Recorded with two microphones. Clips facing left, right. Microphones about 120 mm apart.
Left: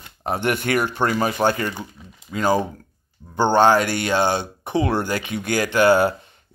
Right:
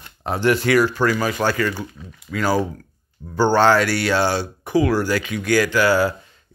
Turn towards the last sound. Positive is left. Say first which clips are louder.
# left 2 dB
turn(degrees=25)  # may be behind; listen again after turning